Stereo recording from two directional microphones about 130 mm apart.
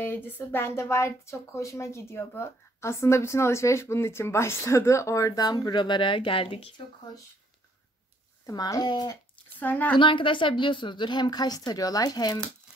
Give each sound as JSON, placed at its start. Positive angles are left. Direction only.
{"t": 0.0, "sound": "speech", "side_deg": 15}
{"t": 8.5, "sound": "speech", "side_deg": 30}
{"t": 9.6, "sound": "speech", "side_deg": 15}
{"t": 9.9, "sound": "a woman's voice", "side_deg": 40}